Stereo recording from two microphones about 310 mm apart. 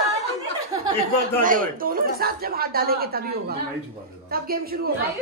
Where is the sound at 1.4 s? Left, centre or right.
Right.